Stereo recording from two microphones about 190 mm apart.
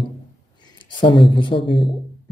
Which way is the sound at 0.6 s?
25° left (ahead or behind).